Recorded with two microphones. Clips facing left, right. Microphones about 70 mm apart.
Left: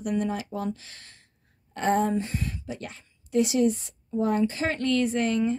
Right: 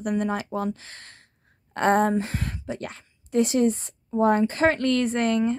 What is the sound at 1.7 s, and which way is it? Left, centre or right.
A woman's voice, right.